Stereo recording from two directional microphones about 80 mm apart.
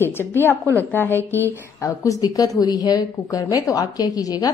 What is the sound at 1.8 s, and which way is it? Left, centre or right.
A woman's voice, left.